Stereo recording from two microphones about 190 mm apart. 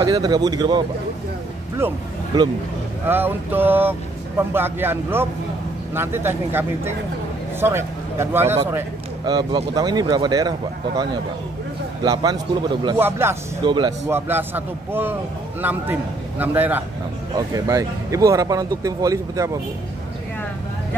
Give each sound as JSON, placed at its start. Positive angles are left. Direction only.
{"t": 0.0, "sound": "speech", "side_deg": -20}
{"t": 1.8, "sound": "speech", "side_deg": -10}
{"t": 9.2, "sound": "speech", "side_deg": -25}
{"t": 12.0, "sound": "speech", "side_deg": -20}
{"t": 13.7, "sound": "speech", "side_deg": -25}
{"t": 14.0, "sound": "speech", "side_deg": -10}